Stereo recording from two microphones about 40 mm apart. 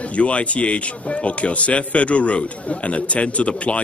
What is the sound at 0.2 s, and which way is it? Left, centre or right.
A man's voice, left.